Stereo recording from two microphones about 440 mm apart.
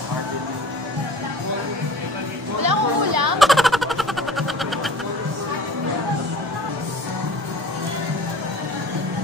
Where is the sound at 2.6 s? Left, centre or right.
Right.